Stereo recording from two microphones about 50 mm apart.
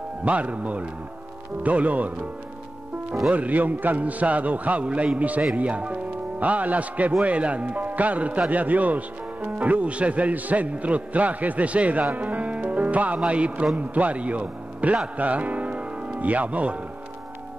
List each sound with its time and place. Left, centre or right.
0.2 s a man's voice: right
3.3 s a man's voice: right
15.1 s music: right
16.2 s a man's voice: right